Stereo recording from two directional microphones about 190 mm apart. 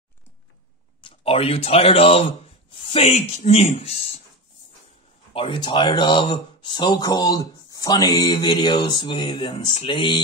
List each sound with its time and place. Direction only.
1.0 s speech: 30° left (ahead or behind)
5.3 s speech: 25° left (ahead or behind)